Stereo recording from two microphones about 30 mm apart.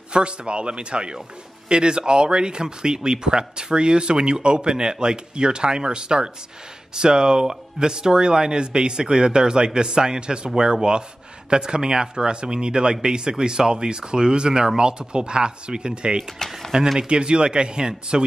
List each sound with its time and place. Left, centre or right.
0.1 s speech: right
16.4 s speech: centre
17.1 s speech: right